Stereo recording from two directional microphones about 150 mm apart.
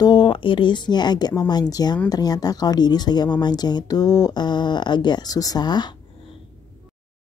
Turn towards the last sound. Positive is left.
turn(degrees=30)  # may be behind; listen again after turning